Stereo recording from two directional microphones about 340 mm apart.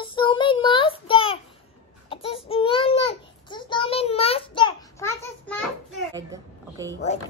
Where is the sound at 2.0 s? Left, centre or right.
Centre.